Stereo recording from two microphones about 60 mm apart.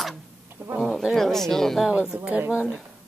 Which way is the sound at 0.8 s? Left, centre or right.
Centre.